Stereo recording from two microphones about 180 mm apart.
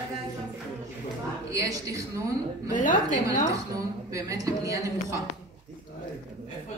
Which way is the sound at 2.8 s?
45° left (ahead or behind).